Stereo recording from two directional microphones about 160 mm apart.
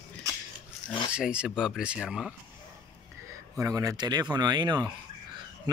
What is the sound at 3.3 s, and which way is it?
Speech, 20° right (ahead or behind).